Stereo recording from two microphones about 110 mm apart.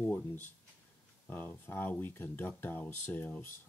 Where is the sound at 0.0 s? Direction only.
15° left (ahead or behind).